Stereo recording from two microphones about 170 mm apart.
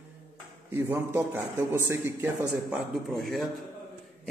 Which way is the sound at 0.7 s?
15° right (ahead or behind).